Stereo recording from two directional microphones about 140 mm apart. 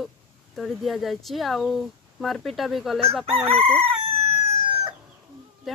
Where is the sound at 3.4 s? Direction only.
45° right (ahead or behind).